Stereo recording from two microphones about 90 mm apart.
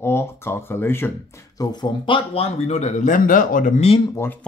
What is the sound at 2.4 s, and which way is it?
Speech, 90° left.